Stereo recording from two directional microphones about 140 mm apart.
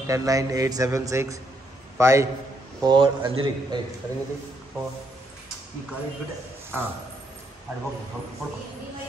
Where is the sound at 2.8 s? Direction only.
35° right (ahead or behind).